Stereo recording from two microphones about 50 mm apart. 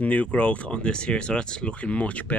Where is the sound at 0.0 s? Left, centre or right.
Left.